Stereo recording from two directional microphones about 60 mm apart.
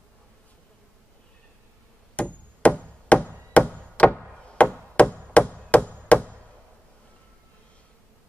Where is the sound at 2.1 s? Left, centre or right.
Left.